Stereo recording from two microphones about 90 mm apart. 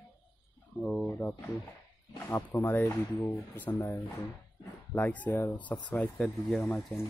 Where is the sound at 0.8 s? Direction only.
10° left (ahead or behind).